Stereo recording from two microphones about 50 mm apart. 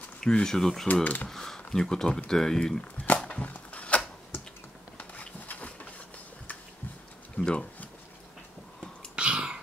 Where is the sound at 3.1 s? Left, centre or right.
Left.